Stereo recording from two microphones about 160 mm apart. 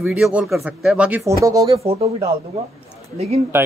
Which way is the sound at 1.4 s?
20° right (ahead or behind).